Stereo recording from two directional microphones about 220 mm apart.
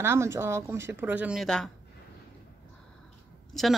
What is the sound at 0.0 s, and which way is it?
A woman's voice, 10° right (ahead or behind).